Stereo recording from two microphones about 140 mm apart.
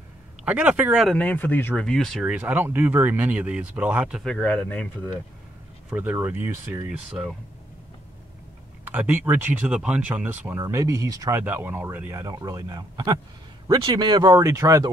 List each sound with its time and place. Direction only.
0.5 s speech: 10° right (ahead or behind)
1.0 s speech: 10° left (ahead or behind); by 4.2 s 10° right (ahead or behind)
4.2 s speech: 5° left (ahead or behind)
5.9 s speech: 10° right (ahead or behind)
8.8 s speech: 15° right (ahead or behind)
10.6 s speech: 25° right (ahead or behind)